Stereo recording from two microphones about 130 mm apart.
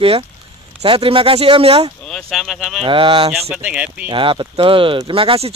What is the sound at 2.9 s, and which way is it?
Speech, 45° right (ahead or behind).